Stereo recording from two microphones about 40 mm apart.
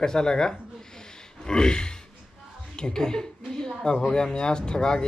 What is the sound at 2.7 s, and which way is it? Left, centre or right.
A woman's voice, centre.